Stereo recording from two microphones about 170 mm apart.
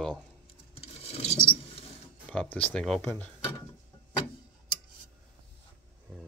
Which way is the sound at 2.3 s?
5° left (ahead or behind).